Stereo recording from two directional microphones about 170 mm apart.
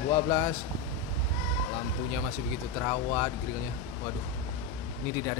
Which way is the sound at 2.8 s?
15° left (ahead or behind).